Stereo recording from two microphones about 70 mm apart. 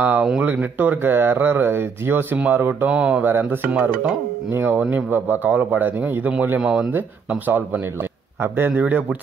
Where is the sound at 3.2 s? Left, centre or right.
Right.